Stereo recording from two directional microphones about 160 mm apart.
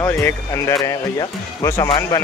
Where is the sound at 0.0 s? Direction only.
20° left (ahead or behind).